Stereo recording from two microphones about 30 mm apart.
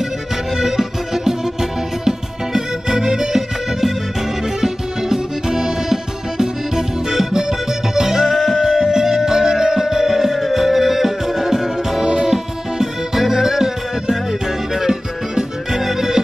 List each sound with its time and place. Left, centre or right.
0.6 s music: centre
8.3 s music: centre
8.6 s music: centre
12.0 s music: right